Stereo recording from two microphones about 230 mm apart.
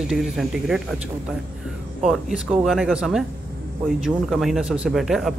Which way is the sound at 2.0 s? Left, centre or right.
Centre.